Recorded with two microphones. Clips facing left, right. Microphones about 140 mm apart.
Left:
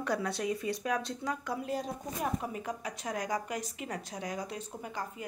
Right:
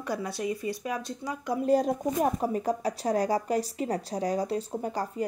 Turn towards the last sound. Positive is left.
turn(degrees=-40)  # may be behind; listen again after turning